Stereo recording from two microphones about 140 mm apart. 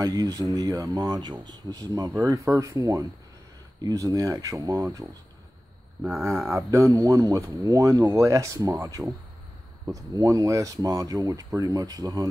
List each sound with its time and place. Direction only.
0.0 s speech: 25° right (ahead or behind)
6.5 s speech: 20° right (ahead or behind)